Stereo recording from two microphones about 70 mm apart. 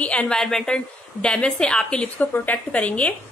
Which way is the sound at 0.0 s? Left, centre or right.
Centre.